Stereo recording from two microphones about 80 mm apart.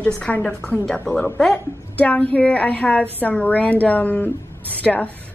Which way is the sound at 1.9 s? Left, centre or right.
Left.